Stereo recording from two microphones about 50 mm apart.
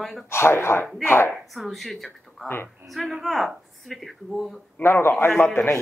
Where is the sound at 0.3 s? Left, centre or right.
Left.